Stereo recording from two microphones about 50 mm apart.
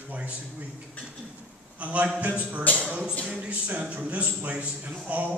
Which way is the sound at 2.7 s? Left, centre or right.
Left.